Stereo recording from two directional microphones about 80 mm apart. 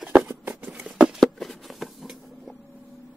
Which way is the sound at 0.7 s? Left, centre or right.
Centre.